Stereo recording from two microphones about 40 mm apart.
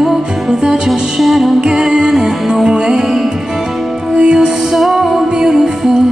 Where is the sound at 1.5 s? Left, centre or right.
Centre.